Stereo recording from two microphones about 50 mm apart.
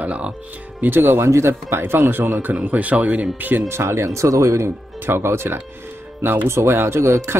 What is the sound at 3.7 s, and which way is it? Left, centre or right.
Speech, right.